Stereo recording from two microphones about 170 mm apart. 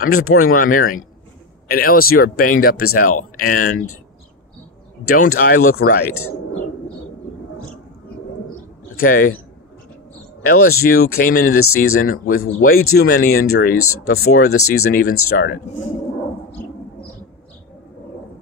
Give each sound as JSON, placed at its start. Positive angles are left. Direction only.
{"t": 0.0, "sound": "speech", "side_deg": 55}
{"t": 5.1, "sound": "speech", "side_deg": 60}
{"t": 9.0, "sound": "speech", "side_deg": 55}
{"t": 10.4, "sound": "speech", "side_deg": 60}